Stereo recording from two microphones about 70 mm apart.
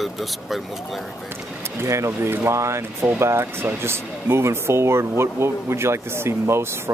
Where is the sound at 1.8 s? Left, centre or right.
Right.